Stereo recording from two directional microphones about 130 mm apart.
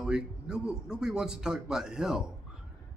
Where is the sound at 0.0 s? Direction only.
5° right (ahead or behind).